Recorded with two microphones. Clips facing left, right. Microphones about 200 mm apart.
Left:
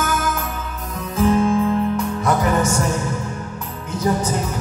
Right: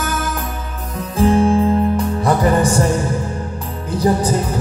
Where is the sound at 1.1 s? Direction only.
30° right (ahead or behind).